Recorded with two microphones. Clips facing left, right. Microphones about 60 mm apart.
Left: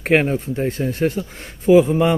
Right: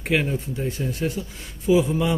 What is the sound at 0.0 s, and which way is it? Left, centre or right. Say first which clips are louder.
Speech: left 6 dB; left.